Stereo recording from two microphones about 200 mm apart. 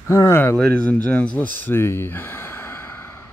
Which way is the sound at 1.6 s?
10° left (ahead or behind).